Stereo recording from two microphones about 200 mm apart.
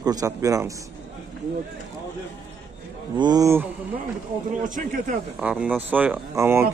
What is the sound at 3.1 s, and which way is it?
Speech, 20° right (ahead or behind).